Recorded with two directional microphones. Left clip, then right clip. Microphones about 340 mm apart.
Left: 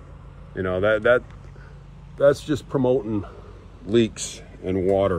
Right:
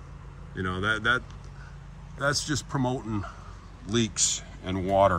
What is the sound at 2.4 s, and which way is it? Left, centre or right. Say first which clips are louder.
Speech: left 5 dB; centre.